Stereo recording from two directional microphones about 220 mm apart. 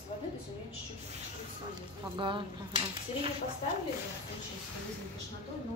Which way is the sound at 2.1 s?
20° right (ahead or behind).